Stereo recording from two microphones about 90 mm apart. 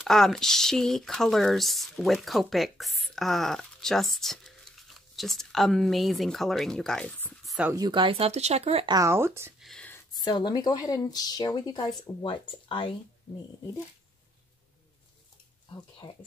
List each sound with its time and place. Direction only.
0.0 s speech: 5° left (ahead or behind)
7.6 s a woman's voice: 15° right (ahead or behind)
7.9 s speech: 80° right
9.0 s speech: 30° right (ahead or behind)
10.1 s speech: 55° left (ahead or behind); by 12.9 s 70° left (ahead or behind)
16.0 s speech: 55° left (ahead or behind)